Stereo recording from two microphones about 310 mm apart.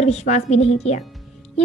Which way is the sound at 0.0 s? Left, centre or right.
Left.